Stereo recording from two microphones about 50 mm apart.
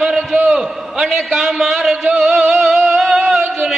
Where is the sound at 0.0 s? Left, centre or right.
Centre.